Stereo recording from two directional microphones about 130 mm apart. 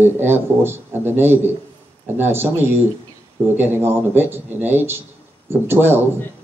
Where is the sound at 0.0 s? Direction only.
15° right (ahead or behind).